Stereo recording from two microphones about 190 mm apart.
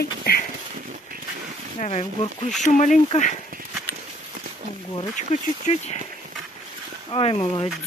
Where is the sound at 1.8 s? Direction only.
40° left (ahead or behind).